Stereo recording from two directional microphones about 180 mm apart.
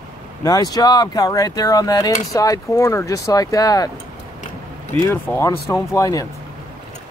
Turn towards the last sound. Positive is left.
turn(degrees=20)  # may be behind; listen again after turning